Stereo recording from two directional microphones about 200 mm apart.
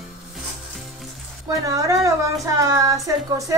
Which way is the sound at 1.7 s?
15° right (ahead or behind).